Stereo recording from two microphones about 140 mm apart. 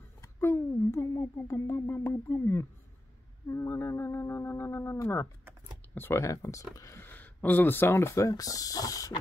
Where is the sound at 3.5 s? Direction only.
20° left (ahead or behind).